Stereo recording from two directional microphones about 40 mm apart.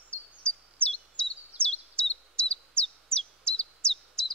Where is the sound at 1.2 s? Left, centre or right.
Left.